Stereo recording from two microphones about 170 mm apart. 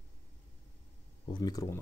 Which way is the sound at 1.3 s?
25° left (ahead or behind).